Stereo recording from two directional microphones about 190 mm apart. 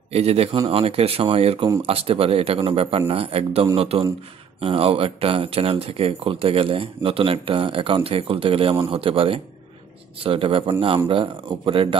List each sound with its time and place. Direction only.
0.1 s a man's voice: 30° right (ahead or behind)